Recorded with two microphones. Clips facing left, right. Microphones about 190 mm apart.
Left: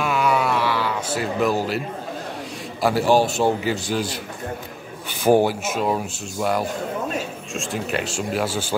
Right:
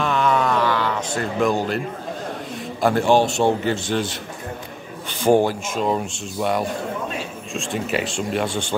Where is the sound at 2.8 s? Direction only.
5° left (ahead or behind).